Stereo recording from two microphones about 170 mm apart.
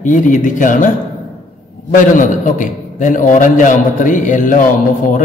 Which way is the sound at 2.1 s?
50° left (ahead or behind).